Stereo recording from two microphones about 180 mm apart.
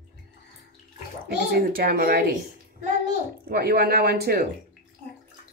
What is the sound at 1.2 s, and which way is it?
Speech, 55° right (ahead or behind).